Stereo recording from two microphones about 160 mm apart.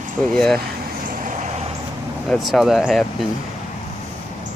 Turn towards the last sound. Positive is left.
turn(degrees=0)  # may be behind; listen again after turning